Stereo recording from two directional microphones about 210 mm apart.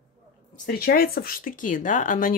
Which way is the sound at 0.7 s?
45° left (ahead or behind).